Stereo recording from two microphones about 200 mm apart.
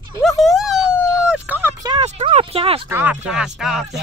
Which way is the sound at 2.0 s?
30° right (ahead or behind).